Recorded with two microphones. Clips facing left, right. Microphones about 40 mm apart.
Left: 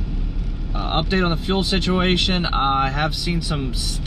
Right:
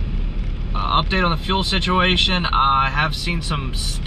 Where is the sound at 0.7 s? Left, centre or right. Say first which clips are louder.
Right 2 dB; right.